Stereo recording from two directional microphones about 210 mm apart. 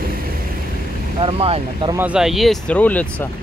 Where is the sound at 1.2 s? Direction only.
25° right (ahead or behind).